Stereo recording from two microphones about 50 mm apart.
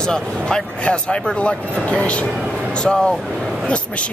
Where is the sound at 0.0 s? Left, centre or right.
Centre.